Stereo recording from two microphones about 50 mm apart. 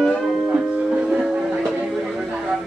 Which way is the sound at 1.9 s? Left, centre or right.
Centre.